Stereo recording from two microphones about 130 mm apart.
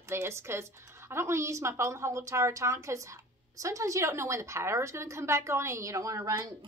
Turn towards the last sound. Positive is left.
turn(degrees=-25)  # may be behind; listen again after turning